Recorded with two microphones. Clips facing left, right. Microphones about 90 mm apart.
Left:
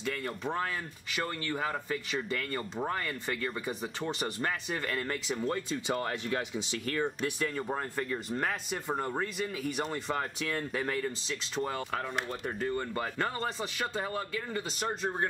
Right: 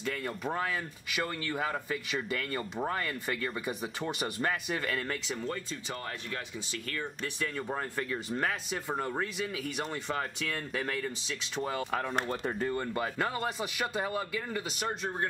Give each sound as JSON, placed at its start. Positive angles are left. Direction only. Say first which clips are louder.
{"t": 0.0, "sound": "speech", "louder": "even", "side_deg": 0}
{"t": 7.2, "sound": "speech", "louder": "left 3 dB", "side_deg": 10}